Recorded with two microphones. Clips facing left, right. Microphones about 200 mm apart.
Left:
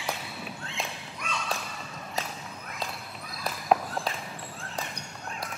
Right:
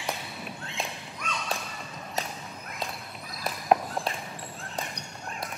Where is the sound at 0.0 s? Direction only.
Centre (ahead or behind).